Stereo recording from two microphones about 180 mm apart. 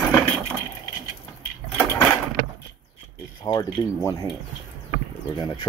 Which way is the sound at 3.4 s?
20° left (ahead or behind).